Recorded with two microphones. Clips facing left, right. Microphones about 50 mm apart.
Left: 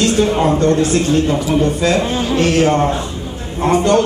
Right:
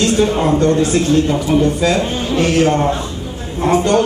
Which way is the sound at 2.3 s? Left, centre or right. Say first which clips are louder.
Even; centre.